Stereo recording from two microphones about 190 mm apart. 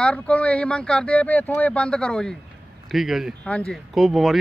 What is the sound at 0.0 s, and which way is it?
Speech, 5° left (ahead or behind).